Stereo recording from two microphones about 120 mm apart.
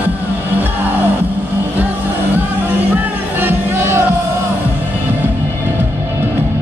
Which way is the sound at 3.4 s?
20° right (ahead or behind).